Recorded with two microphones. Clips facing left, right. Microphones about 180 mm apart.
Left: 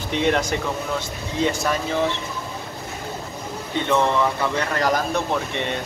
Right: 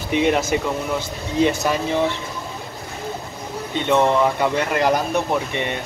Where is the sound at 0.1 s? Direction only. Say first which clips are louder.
Right 3 dB; 10° right (ahead or behind).